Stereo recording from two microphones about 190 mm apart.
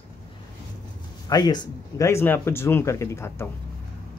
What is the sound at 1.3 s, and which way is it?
Speech, 20° left (ahead or behind).